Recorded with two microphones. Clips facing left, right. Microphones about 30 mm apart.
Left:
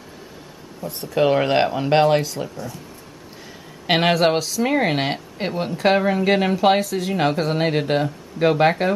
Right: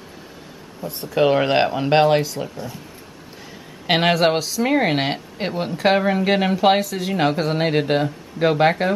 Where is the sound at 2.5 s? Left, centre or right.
Right.